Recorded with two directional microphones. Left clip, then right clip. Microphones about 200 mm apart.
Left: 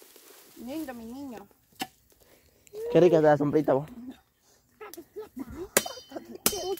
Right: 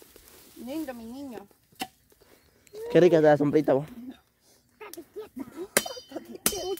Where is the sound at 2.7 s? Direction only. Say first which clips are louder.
Right 1 dB; 15° right (ahead or behind).